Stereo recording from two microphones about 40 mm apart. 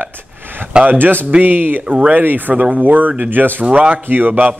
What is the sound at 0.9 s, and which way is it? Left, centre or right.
Speech, right.